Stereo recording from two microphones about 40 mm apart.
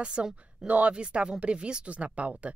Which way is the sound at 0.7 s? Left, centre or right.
Right.